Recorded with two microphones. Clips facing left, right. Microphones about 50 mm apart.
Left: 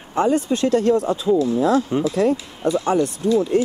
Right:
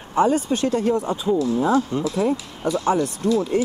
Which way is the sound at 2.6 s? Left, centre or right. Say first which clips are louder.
Left 1 dB; centre.